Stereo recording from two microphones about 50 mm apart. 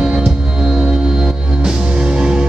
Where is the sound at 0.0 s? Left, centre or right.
Centre.